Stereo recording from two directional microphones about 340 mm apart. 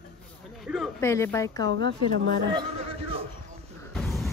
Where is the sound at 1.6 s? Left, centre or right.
Right.